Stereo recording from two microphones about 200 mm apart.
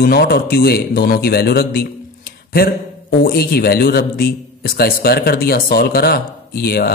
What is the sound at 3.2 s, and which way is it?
Speech, 50° left (ahead or behind).